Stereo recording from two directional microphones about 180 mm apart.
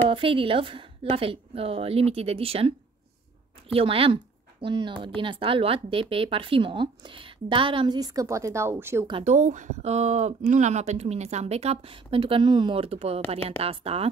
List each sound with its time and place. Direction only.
0.1 s speech: 30° right (ahead or behind); by 9.0 s 15° right (ahead or behind)
9.0 s speech: 35° right (ahead or behind)